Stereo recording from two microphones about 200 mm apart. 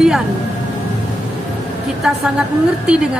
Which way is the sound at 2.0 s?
5° right (ahead or behind).